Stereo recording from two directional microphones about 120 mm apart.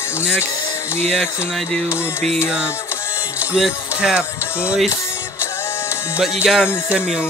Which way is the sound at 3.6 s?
5° right (ahead or behind).